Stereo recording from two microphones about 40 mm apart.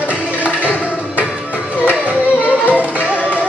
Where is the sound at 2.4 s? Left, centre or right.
Left.